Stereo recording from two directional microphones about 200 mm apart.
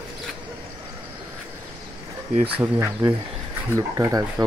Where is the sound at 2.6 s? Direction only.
15° right (ahead or behind).